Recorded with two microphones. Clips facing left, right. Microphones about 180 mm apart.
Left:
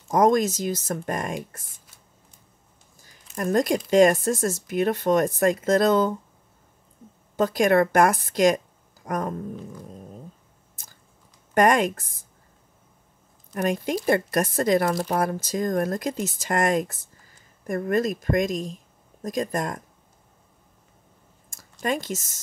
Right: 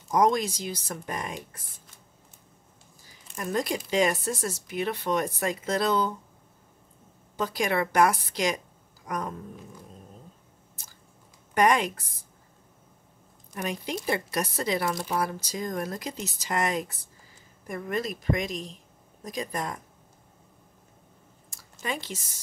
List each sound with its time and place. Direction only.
0.1 s speech: 45° left (ahead or behind)
3.3 s speech: 50° left (ahead or behind)
7.3 s speech: 50° left (ahead or behind)
9.0 s cat: 50° left (ahead or behind)
11.5 s speech: 50° left (ahead or behind)
13.6 s speech: 50° left (ahead or behind)
21.8 s speech: 45° left (ahead or behind)